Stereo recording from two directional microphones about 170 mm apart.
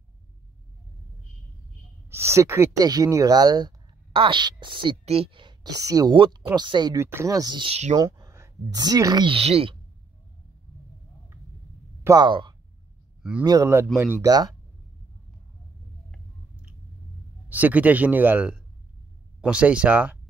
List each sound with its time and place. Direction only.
2.0 s speech: 15° right (ahead or behind)
7.7 s speech: 40° right (ahead or behind)
8.0 s speech: 20° right (ahead or behind); by 9.8 s 35° right (ahead or behind)
12.0 s speech: 20° right (ahead or behind)
17.5 s speech: 10° right (ahead or behind)